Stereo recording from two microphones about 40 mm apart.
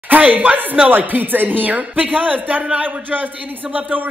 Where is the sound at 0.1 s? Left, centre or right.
Right.